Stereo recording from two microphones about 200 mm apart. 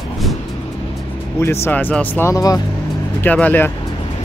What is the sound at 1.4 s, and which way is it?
Speech, 10° left (ahead or behind).